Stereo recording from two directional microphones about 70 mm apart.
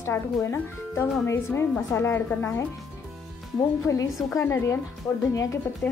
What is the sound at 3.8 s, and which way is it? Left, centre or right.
Speech, left.